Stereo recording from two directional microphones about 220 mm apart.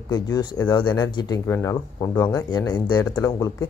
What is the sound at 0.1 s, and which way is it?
Speech, 15° left (ahead or behind).